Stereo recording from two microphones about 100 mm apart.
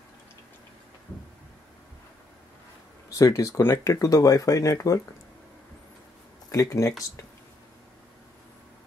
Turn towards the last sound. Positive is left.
turn(degrees=35)  # may be behind; listen again after turning